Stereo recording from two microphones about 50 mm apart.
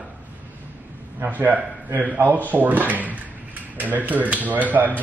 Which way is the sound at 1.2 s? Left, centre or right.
Right.